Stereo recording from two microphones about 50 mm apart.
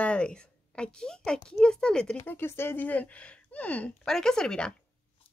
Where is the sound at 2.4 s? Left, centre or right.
Left.